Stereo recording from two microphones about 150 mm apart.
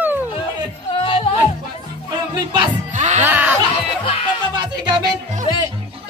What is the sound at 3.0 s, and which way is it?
Music, 50° right (ahead or behind).